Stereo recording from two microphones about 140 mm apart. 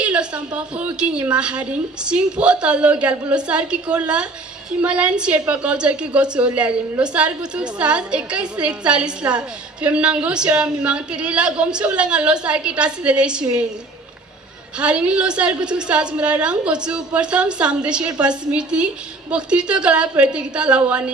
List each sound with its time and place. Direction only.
0.0 s a woman's voice: 5° right (ahead or behind)
14.8 s a woman's voice: 10° right (ahead or behind)